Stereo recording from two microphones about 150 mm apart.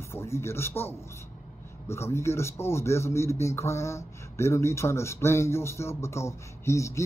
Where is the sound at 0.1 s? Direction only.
15° left (ahead or behind).